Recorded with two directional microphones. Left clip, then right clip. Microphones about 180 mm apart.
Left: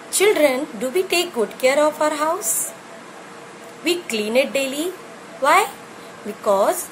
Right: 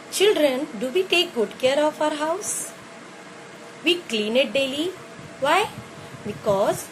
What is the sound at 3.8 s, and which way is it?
A woman's voice, 30° left (ahead or behind).